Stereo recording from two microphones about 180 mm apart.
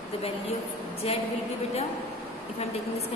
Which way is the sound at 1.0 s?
35° left (ahead or behind).